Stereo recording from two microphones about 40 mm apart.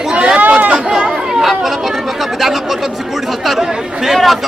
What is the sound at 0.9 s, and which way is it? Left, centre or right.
Chatter, centre.